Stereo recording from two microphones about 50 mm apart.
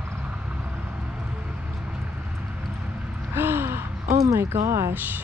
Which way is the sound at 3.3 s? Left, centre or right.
Right.